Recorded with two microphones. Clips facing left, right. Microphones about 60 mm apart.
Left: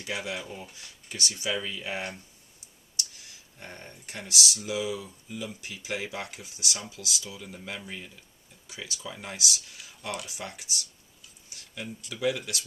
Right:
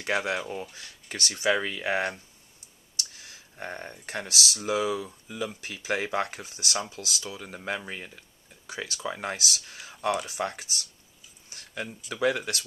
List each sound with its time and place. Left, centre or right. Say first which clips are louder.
0.0 s speech: right 6 dB; right
3.5 s speech: right 7 dB; right
11.5 s a sound: right 4 dB; right
12.1 s speech: right 3 dB; right